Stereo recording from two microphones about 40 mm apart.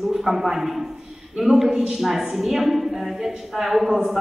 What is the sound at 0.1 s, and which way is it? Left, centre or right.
A man's voice, centre.